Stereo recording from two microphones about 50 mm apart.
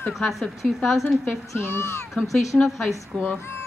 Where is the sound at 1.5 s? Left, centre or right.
Left.